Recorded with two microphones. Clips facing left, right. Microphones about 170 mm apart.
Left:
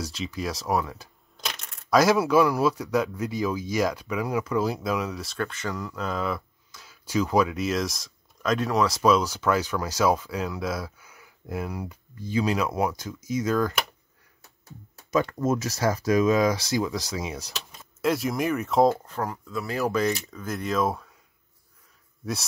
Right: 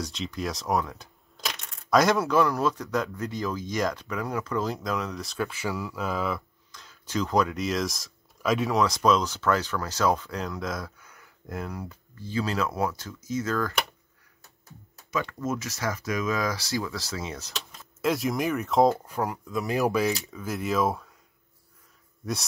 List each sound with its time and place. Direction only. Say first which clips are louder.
0.0 s speech: left 1 dB; 5° left (ahead or behind)
15.0 s speech: left 6 dB; 40° left (ahead or behind); by 17.6 s 10° left (ahead or behind)
18.0 s speech: left 1 dB; centre (ahead or behind)
19.0 s speech: right 1 dB; 15° right (ahead or behind)
20.0 s speech: left 1 dB; 5° right (ahead or behind)
22.2 s speech: even; centre (ahead or behind)